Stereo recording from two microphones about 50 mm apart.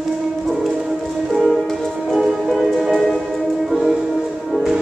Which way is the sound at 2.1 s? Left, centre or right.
Centre.